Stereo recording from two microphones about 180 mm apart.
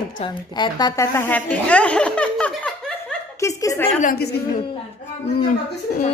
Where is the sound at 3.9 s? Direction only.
55° left (ahead or behind).